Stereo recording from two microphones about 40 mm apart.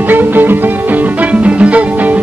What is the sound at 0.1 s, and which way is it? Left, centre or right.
Music, right.